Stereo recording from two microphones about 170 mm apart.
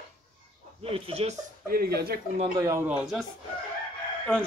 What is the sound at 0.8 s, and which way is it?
Speech, 35° right (ahead or behind).